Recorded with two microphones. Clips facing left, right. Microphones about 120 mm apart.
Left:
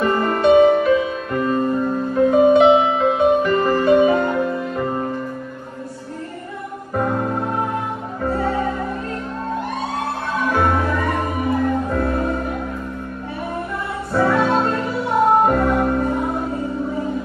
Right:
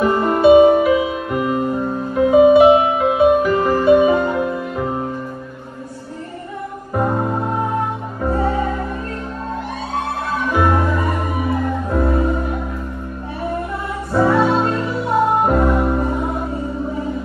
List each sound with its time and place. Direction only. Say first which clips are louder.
0.0 s music: right 3 dB; 5° right (ahead or behind)
7.0 s music: right 2 dB; 10° right (ahead or behind)
10.5 s music: right 2 dB; 5° right (ahead or behind)
14.1 s music: right 2 dB; 10° right (ahead or behind)